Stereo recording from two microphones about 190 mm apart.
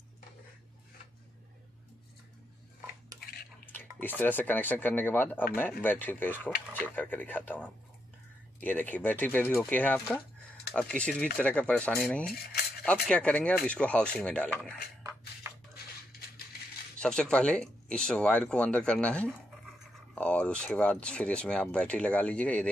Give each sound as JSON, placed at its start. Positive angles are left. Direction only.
{"t": 3.6, "sound": "speech", "side_deg": 10}
{"t": 12.3, "sound": "speech", "side_deg": 55}
{"t": 12.8, "sound": "speech", "side_deg": 5}
{"t": 17.0, "sound": "speech", "side_deg": 5}